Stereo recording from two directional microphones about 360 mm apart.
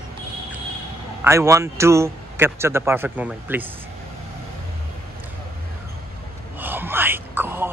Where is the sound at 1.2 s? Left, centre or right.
Centre.